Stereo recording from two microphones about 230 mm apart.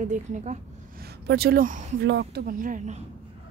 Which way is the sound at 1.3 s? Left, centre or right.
Right.